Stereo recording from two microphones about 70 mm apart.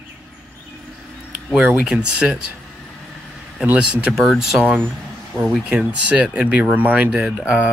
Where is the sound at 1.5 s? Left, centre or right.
Centre.